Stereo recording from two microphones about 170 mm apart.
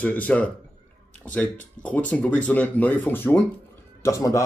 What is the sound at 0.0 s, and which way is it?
A man's voice, 10° left (ahead or behind).